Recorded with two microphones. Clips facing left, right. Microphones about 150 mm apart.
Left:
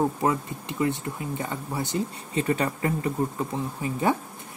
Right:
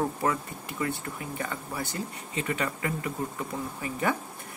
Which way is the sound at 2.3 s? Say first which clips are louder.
Left 6 dB; 35° left (ahead or behind).